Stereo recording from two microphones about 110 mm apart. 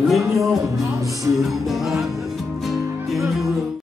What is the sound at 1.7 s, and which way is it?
Music, centre (ahead or behind).